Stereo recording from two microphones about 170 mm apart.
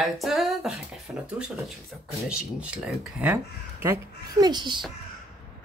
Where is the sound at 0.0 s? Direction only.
Centre (ahead or behind).